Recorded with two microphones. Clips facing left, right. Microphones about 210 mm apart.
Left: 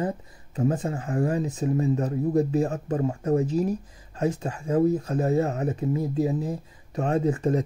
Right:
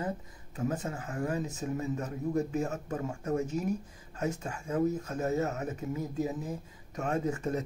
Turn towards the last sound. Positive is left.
turn(degrees=35)  # may be behind; listen again after turning